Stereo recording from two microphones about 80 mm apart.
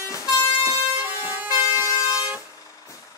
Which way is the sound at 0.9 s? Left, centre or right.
Right.